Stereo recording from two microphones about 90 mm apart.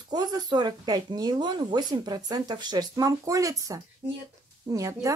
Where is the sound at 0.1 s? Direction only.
50° right (ahead or behind).